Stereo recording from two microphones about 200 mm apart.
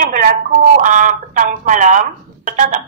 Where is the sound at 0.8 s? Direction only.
40° right (ahead or behind).